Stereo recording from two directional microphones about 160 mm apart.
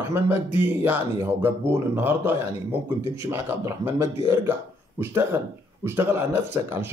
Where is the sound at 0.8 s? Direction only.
10° right (ahead or behind).